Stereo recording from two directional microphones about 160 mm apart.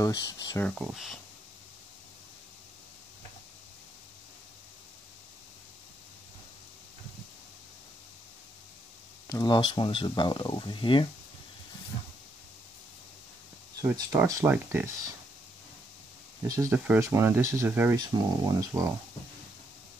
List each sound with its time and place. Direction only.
0.0 s speech: 25° left (ahead or behind)
0.7 s speech: centre (ahead or behind)
9.5 s speech: 30° left (ahead or behind)
13.7 s speech: 20° right (ahead or behind)
16.4 s speech: 20° right (ahead or behind)
17.9 s speech: 25° right (ahead or behind)